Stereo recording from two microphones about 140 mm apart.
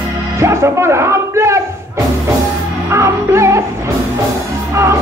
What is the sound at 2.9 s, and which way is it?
Music, 20° right (ahead or behind).